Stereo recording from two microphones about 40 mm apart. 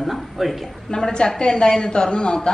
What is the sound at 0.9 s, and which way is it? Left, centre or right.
A woman's voice, centre.